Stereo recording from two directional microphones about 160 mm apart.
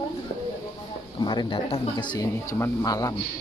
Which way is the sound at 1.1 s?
25° left (ahead or behind).